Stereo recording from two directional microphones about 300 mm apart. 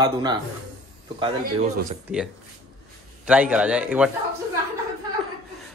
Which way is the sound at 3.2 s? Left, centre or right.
Centre.